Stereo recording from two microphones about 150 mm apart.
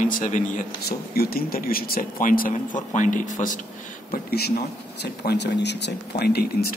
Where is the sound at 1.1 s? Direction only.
90° left.